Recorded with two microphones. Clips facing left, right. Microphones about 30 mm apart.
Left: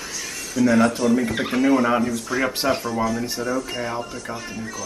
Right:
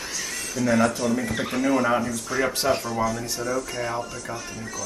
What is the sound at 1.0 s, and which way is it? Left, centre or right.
Speech, left.